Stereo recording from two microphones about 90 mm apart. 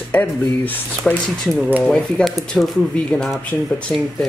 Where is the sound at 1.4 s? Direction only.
Centre (ahead or behind).